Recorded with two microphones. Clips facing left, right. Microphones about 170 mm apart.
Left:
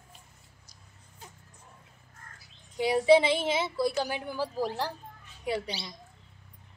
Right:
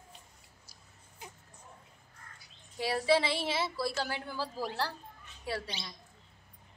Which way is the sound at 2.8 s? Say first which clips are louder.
Left 7 dB; 20° left (ahead or behind).